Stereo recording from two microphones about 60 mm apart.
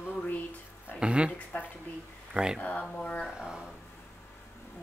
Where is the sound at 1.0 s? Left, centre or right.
Centre.